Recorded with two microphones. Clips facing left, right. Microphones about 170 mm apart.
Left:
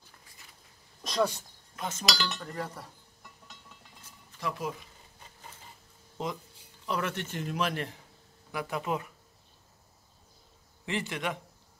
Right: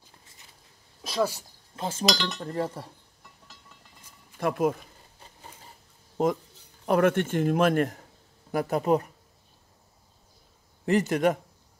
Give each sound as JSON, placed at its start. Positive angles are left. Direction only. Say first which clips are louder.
{"t": 1.0, "sound": "speech", "louder": "right 2 dB", "side_deg": -5}
{"t": 1.8, "sound": "speech", "louder": "right 5 dB", "side_deg": -30}
{"t": 2.1, "sound": "cutlery", "louder": "right 2 dB", "side_deg": 0}
{"t": 2.4, "sound": "speech", "louder": "right 7 dB", "side_deg": -30}
{"t": 4.4, "sound": "a man's voice", "louder": "right 10 dB", "side_deg": -55}
{"t": 6.2, "sound": "a man's voice", "louder": "right 10 dB", "side_deg": -45}
{"t": 10.9, "sound": "a man's voice", "louder": "right 11 dB", "side_deg": -45}